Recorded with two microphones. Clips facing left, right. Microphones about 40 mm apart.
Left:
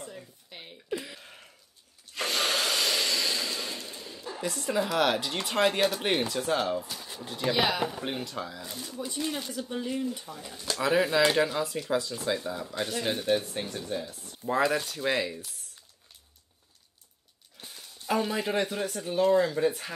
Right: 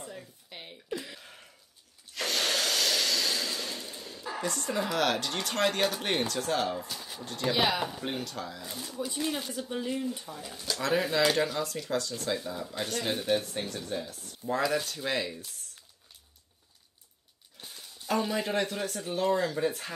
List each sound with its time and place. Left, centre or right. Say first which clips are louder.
0.0 s a sound: even; centre
4.5 s speech: left 3 dB; centre
10.7 s speech: left 3 dB; centre
14.5 s speech: left 3 dB; centre
14.8 s speech: left 3 dB; centre
17.6 s speech: even; centre